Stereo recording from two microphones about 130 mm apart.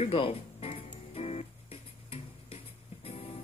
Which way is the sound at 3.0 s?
50° left (ahead or behind).